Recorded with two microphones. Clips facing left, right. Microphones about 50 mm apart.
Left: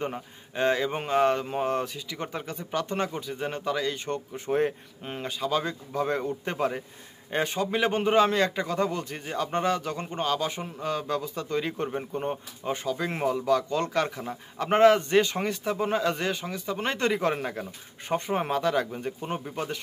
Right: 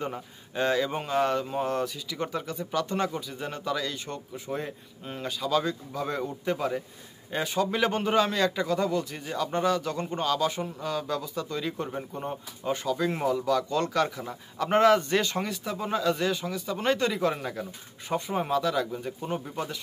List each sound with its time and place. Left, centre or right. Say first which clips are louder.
0.0 s a man's voice: left 1 dB; left
5.1 s a man's voice: right 1 dB; left
7.6 s a man's voice: left 1 dB; left
12.1 s speech: left 5 dB; left
12.6 s a man's voice: right 2 dB; left
15.5 s a man's voice: left 3 dB; left
18.1 s a man's voice: even; left